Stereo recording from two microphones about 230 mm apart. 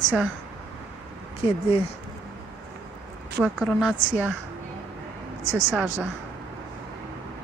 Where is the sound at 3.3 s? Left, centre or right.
Centre.